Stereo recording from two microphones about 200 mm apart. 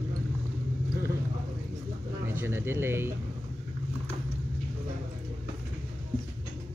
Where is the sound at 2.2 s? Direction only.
10° right (ahead or behind).